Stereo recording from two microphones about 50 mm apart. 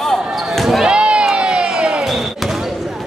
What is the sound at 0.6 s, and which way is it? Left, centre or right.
Basketball bounce, centre.